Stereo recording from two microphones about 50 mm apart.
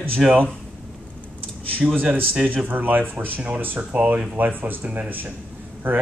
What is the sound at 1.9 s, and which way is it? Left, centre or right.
Speech, right.